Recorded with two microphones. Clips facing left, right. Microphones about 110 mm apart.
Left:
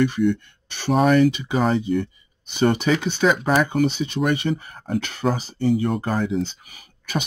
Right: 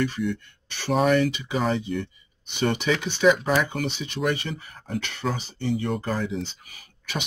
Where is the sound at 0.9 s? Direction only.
45° left (ahead or behind).